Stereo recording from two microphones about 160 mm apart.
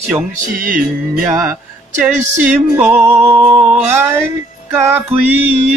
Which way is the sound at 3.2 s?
30° right (ahead or behind).